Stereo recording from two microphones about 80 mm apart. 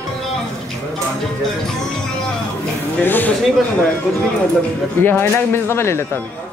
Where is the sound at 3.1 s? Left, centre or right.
Left.